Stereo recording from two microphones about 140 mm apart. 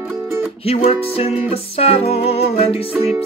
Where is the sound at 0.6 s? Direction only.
45° left (ahead or behind).